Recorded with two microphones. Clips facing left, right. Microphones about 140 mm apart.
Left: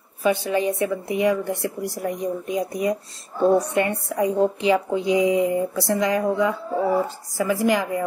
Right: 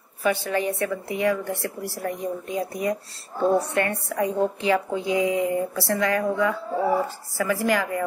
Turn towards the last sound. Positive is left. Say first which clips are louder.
# left 2 dB
turn(degrees=20)  # may be behind; listen again after turning